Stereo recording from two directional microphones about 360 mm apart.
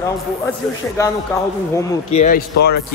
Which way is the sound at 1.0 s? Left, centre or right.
Centre.